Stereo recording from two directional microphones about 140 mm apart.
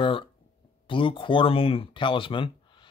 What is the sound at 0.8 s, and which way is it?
Speech, 35° left (ahead or behind).